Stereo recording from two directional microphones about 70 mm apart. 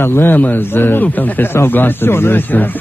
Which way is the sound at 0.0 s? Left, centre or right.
Left.